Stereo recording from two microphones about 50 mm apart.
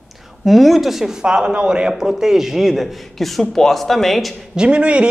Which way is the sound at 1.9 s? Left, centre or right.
Centre.